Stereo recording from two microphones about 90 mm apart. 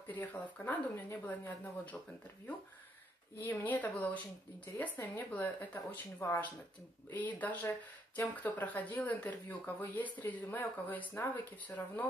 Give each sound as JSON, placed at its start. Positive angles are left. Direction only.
{"t": 0.1, "sound": "speech", "side_deg": 20}
{"t": 3.3, "sound": "speech", "side_deg": 20}